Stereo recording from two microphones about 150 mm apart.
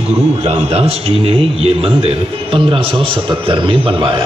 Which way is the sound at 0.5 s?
45° right (ahead or behind).